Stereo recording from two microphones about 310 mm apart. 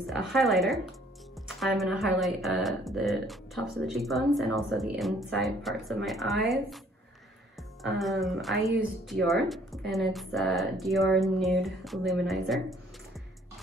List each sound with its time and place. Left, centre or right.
0.0 s speech: centre
8.0 s speech: centre